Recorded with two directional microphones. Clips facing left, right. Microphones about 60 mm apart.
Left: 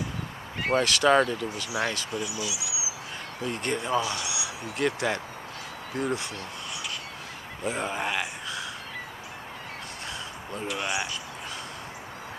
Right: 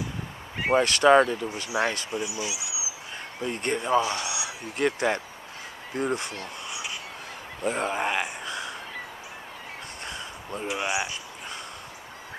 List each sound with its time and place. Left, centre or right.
0.6 s speech: centre
1.5 s speech: right
4.8 s speech: centre
5.9 s speech: right
7.6 s speech: centre
7.9 s speech: centre
10.7 s speech: centre